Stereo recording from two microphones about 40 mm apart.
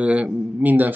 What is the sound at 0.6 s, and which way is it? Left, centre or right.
Speech, right.